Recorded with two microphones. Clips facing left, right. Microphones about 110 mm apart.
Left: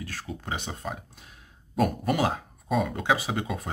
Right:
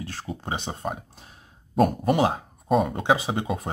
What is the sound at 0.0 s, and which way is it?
Speech, 25° right (ahead or behind).